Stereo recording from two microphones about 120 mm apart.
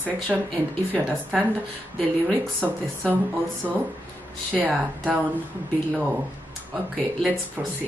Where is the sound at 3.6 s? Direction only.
30° right (ahead or behind).